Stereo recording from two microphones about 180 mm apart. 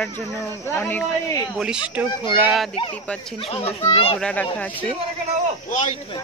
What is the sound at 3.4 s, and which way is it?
Speech, 30° left (ahead or behind).